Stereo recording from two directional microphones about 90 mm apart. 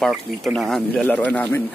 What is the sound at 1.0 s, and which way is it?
Speech, 15° left (ahead or behind).